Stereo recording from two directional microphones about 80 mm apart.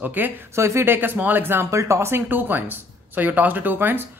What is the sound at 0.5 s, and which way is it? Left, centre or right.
Speech, right.